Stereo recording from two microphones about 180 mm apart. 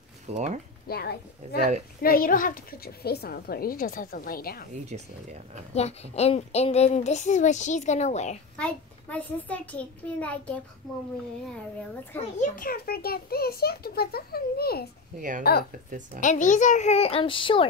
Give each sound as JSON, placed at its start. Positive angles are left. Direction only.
{"t": 0.3, "sound": "speech", "side_deg": -40}
{"t": 0.8, "sound": "a woman's voice", "side_deg": 60}
{"t": 4.8, "sound": "speech", "side_deg": -35}
{"t": 5.8, "sound": "a child's voice", "side_deg": 35}
{"t": 8.5, "sound": "a child's voice", "side_deg": 5}
{"t": 12.4, "sound": "a woman's voice", "side_deg": 50}
{"t": 15.1, "sound": "a woman's voice", "side_deg": -45}
{"t": 16.2, "sound": "a child's voice", "side_deg": 45}